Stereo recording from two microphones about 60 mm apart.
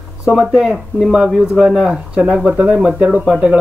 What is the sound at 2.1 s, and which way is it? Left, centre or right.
Speech, centre.